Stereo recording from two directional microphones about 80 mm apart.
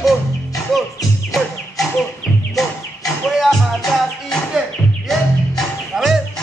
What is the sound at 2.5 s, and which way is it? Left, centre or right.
Music, centre.